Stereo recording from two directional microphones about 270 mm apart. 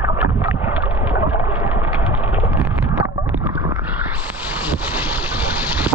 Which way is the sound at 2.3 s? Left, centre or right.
Centre.